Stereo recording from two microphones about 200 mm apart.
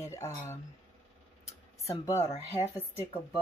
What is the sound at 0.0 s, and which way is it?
Speech, 15° left (ahead or behind).